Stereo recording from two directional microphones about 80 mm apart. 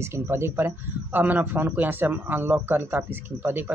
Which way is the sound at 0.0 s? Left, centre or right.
Right.